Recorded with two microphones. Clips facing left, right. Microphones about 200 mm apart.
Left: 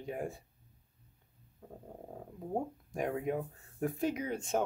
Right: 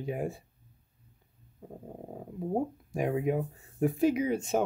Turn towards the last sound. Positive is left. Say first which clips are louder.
# right 6 dB
turn(degrees=-5)  # may be behind; listen again after turning